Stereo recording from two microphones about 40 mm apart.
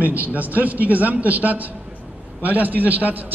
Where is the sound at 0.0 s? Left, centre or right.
Right.